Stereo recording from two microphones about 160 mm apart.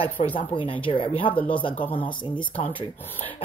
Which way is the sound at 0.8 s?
30° left (ahead or behind).